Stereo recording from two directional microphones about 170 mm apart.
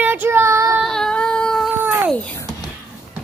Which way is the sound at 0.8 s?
5° left (ahead or behind).